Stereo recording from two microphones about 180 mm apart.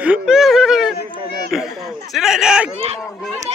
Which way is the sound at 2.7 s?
35° right (ahead or behind).